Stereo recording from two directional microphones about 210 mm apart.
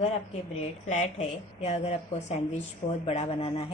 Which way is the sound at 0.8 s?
30° left (ahead or behind).